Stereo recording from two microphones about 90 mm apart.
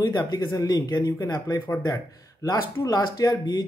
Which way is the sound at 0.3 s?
45° left (ahead or behind).